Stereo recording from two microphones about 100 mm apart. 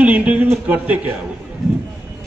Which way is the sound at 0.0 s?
15° right (ahead or behind).